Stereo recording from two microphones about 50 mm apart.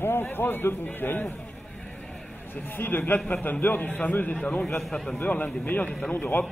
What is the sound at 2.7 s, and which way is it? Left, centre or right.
A man's voice, left.